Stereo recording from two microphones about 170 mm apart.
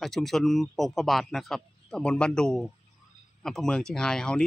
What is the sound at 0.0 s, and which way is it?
Speech, centre (ahead or behind).